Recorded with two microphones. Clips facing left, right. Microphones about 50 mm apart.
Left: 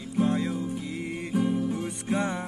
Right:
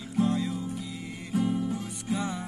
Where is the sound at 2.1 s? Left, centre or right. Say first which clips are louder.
Left 3 dB; left.